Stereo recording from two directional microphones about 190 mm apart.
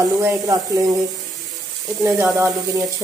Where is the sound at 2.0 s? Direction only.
15° right (ahead or behind).